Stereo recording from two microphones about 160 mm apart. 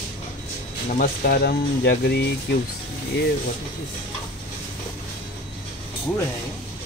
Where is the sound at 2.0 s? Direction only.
90° left.